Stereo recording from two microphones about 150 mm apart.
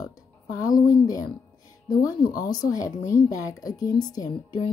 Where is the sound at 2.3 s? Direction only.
25° left (ahead or behind).